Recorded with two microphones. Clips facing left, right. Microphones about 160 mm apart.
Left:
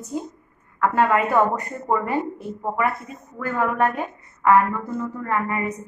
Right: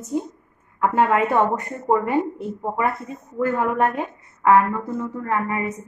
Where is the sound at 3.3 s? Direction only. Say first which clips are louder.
Right 2 dB; 25° right (ahead or behind).